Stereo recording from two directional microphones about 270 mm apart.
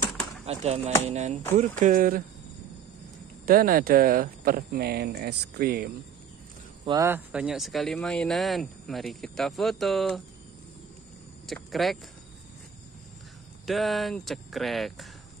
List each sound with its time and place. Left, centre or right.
0.5 s speech: right
3.4 s speech: right
6.9 s speech: centre
11.4 s speech: centre
13.7 s speech: centre